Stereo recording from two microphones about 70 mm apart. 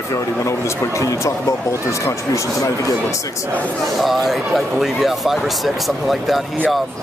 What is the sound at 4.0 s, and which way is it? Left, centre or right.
Speech, centre.